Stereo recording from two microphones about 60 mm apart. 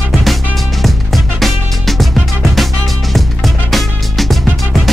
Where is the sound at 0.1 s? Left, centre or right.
Centre.